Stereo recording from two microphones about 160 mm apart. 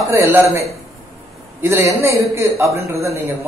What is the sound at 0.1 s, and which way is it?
Speech, 15° right (ahead or behind).